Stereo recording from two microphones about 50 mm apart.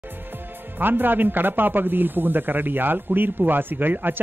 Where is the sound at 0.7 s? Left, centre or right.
Right.